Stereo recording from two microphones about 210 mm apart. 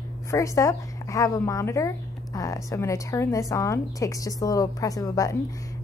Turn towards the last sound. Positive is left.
turn(degrees=15)  # may be behind; listen again after turning